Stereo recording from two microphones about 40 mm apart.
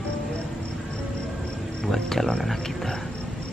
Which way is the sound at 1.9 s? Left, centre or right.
Centre.